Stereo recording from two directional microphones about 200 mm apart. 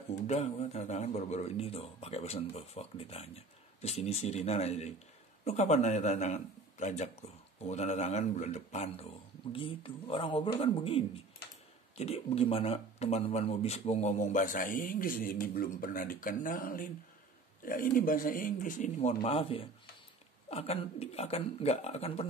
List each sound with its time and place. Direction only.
0.3 s speech: 30° left (ahead or behind)